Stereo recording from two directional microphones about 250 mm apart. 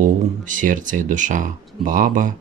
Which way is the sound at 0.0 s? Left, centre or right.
Right.